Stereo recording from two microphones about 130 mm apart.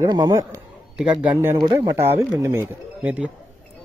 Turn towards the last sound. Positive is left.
turn(degrees=-10)  # may be behind; listen again after turning